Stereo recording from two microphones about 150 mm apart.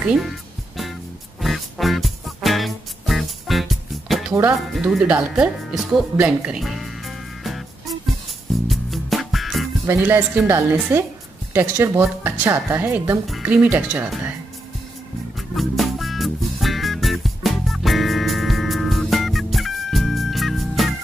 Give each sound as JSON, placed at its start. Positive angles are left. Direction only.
{"t": 0.0, "sound": "speech", "side_deg": -5}
{"t": 1.4, "sound": "music", "side_deg": 0}
{"t": 4.3, "sound": "speech", "side_deg": -25}
{"t": 4.6, "sound": "speech", "side_deg": 0}
{"t": 8.6, "sound": "music", "side_deg": 0}
{"t": 9.8, "sound": "a woman's voice", "side_deg": -15}
{"t": 15.3, "sound": "music", "side_deg": 0}